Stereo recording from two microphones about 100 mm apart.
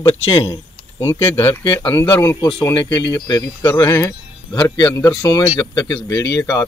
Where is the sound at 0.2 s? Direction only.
65° left (ahead or behind).